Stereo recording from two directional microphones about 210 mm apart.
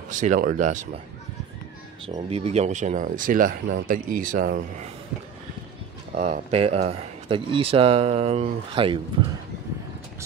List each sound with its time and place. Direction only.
0.1 s speech: 35° right (ahead or behind)
2.0 s speech: 30° right (ahead or behind)
6.1 s speech: 30° right (ahead or behind)